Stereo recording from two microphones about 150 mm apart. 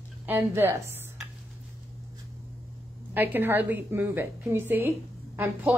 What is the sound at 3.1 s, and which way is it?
A woman's voice, 15° right (ahead or behind).